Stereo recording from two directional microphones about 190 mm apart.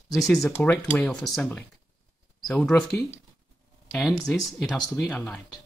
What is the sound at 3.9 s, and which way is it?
Speech, centre (ahead or behind).